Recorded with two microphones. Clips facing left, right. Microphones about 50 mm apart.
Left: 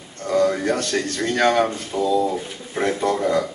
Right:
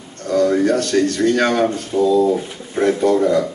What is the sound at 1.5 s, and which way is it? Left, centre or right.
Speech, centre.